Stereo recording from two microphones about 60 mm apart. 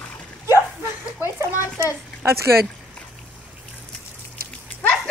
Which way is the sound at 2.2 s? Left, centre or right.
Right.